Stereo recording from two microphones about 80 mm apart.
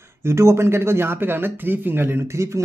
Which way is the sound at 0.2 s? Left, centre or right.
Right.